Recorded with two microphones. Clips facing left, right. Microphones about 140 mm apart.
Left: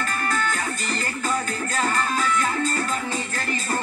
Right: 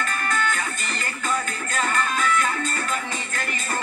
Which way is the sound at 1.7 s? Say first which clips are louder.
Even; 35° left (ahead or behind).